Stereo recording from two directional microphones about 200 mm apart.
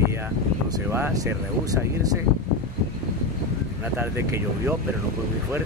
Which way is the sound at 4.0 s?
10° right (ahead or behind).